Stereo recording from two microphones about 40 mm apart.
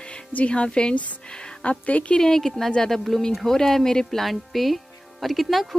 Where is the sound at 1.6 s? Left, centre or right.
Left.